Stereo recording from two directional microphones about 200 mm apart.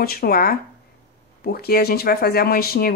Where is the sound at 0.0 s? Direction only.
50° left (ahead or behind).